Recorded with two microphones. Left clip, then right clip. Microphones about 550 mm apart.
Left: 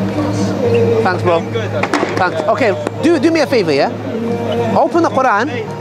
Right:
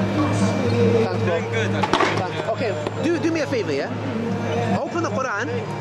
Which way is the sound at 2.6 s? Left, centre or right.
Left.